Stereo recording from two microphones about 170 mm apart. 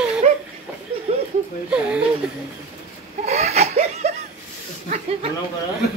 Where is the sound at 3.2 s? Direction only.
40° right (ahead or behind).